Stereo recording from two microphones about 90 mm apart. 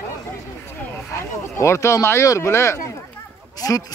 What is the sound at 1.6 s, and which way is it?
Speech, 35° left (ahead or behind).